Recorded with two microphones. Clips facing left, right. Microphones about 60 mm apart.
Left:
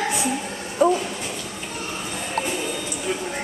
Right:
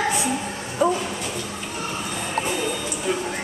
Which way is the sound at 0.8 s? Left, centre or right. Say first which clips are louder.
Left 2 dB; centre.